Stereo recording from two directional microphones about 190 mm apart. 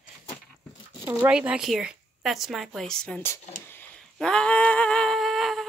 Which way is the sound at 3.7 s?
5° left (ahead or behind).